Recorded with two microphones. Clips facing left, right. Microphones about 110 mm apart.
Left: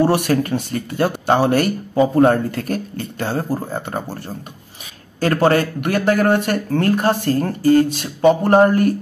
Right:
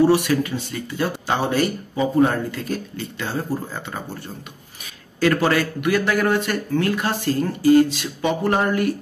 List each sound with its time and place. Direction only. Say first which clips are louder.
0.0 s speech: left 1 dB; 55° left (ahead or behind)
5.2 s speech: left 3 dB; 40° left (ahead or behind)